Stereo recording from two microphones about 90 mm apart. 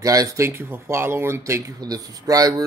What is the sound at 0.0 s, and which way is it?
Speech, 40° right (ahead or behind).